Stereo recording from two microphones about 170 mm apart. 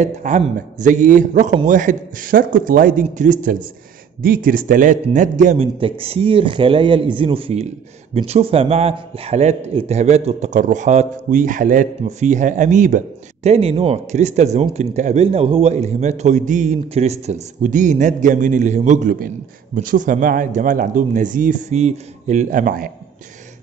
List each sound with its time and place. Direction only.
0.0 s a man's voice: 45° right (ahead or behind)
5.8 s a man's voice: 35° right (ahead or behind); by 22.8 s 55° right (ahead or behind)